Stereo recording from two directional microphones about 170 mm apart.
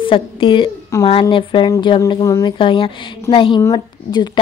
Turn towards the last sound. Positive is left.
turn(degrees=25)  # may be behind; listen again after turning